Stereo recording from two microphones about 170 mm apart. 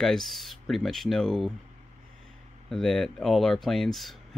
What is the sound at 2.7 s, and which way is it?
Speech, centre (ahead or behind).